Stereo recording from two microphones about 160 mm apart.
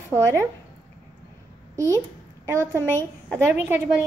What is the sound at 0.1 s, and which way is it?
Speech, 15° right (ahead or behind).